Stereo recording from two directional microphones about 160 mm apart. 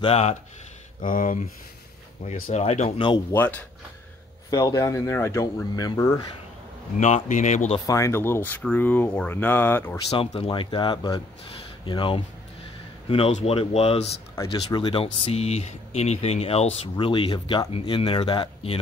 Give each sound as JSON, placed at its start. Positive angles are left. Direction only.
{"t": 0.0, "sound": "speech", "side_deg": 40}
{"t": 1.0, "sound": "speech", "side_deg": 60}
{"t": 2.5, "sound": "speech", "side_deg": 45}
{"t": 3.0, "sound": "speech", "side_deg": 30}
{"t": 3.3, "sound": "speech", "side_deg": 10}
{"t": 4.5, "sound": "speech", "side_deg": 25}
{"t": 7.2, "sound": "speech", "side_deg": 50}
{"t": 7.8, "sound": "speech", "side_deg": 20}
{"t": 10.0, "sound": "speech", "side_deg": 40}
{"t": 14.5, "sound": "speech", "side_deg": 30}
{"t": 15.1, "sound": "speech", "side_deg": 40}